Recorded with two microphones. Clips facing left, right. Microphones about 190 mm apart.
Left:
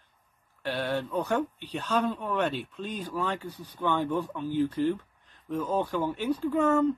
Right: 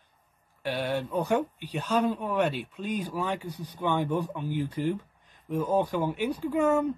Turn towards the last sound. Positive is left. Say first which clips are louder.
# left 1 dB
turn(degrees=-10)  # may be behind; listen again after turning